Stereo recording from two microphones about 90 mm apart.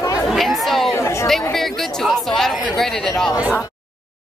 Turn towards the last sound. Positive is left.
turn(degrees=5)  # may be behind; listen again after turning